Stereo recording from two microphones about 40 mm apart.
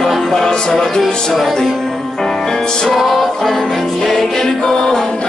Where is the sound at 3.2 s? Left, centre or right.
Centre.